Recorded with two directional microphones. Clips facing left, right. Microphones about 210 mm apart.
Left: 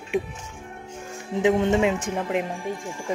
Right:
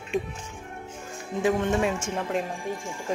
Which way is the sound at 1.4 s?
20° left (ahead or behind).